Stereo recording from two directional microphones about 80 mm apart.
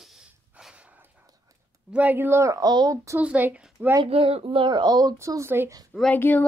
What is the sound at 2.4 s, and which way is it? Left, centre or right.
Speech, right.